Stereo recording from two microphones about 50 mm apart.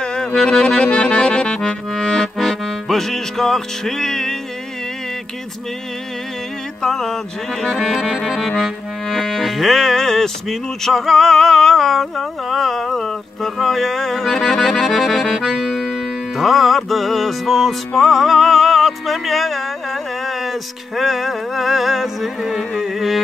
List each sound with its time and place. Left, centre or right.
0.0 s music: centre
0.8 s accordion: left; by 4.4 s centre
6.8 s a sound: centre
7.7 s accordion: centre
8.2 s accordion: centre
15.4 s accordion: centre
15.9 s music: centre